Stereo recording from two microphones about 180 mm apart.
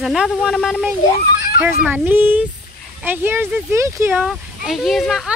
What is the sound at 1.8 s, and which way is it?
Speech, 10° right (ahead or behind).